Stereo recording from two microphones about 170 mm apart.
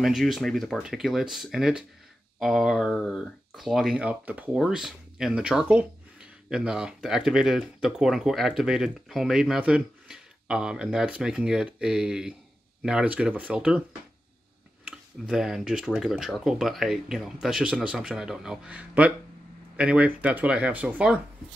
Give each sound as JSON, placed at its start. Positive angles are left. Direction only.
{"t": 0.0, "sound": "speech", "side_deg": 0}
{"t": 14.9, "sound": "speech", "side_deg": 0}